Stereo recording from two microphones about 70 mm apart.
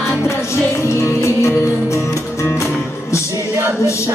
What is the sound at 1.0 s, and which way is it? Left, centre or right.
Music, left.